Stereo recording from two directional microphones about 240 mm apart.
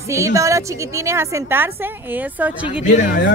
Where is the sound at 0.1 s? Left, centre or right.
Centre.